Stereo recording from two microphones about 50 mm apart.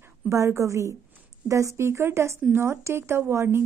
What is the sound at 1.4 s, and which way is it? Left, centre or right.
Speech, right.